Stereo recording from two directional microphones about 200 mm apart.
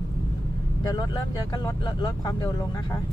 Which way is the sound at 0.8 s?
20° left (ahead or behind).